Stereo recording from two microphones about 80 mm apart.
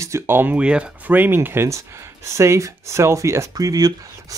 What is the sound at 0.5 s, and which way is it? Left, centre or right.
Speech, centre.